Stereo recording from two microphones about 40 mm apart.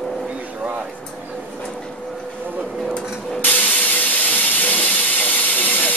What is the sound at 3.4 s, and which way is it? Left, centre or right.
Spray, left.